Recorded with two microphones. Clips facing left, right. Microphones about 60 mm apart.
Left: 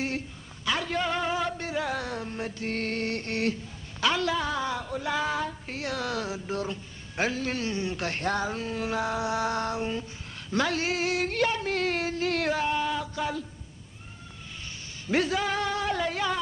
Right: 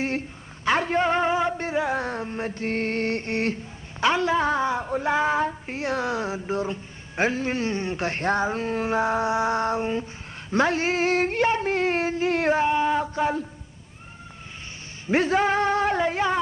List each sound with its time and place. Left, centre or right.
0.7 s a sound: right
10.5 s female singing: right
15.0 s speech: right